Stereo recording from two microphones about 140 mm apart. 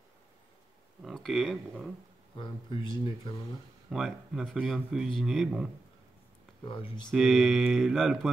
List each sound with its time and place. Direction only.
1.0 s speech: centre (ahead or behind)
2.3 s speech: 35° left (ahead or behind)
3.9 s speech: centre (ahead or behind)
6.6 s speech: 35° left (ahead or behind)
7.1 s speech: centre (ahead or behind)